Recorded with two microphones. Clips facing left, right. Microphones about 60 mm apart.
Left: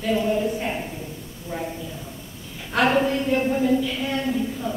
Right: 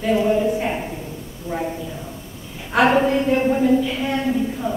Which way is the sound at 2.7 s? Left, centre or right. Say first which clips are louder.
Right 4 dB; centre.